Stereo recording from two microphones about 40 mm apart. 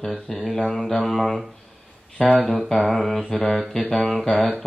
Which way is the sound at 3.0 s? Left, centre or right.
Centre.